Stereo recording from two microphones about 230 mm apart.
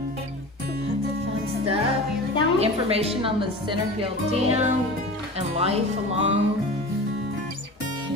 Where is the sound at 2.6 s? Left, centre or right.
Right.